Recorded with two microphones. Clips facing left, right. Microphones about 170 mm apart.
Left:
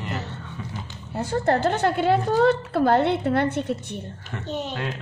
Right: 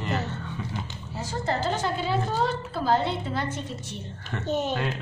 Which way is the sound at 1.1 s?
60° left (ahead or behind).